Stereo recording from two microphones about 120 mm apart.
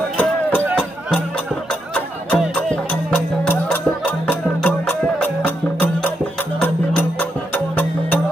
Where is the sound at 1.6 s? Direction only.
5° left (ahead or behind).